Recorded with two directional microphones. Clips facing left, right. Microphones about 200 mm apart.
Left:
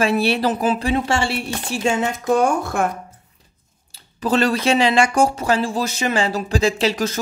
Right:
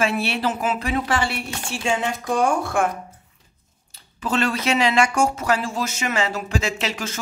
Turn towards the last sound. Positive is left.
turn(degrees=35)  # may be behind; listen again after turning